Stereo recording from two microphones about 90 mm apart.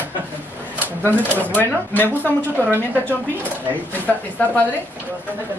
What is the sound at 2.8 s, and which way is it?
Speech, 20° left (ahead or behind).